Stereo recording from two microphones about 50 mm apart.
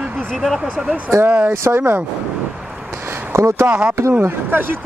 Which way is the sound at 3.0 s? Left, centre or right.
Right.